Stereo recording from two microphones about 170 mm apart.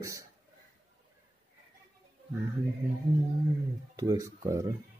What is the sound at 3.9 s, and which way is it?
Speech, 20° right (ahead or behind).